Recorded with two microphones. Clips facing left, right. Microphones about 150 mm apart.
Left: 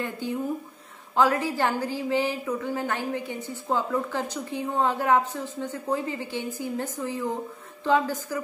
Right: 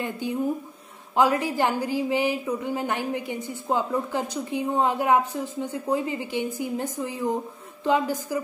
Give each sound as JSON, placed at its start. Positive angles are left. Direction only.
{"t": 0.2, "sound": "a woman's voice", "side_deg": -15}